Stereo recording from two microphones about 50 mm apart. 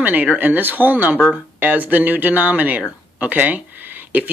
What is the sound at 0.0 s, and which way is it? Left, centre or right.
Speech, right.